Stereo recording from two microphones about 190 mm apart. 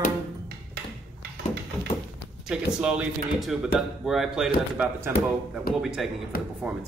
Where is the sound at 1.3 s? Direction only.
60° right (ahead or behind).